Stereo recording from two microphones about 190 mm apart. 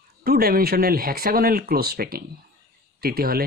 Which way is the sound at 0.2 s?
50° right (ahead or behind).